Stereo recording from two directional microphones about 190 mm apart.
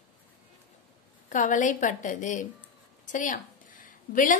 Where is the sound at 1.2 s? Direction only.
40° left (ahead or behind).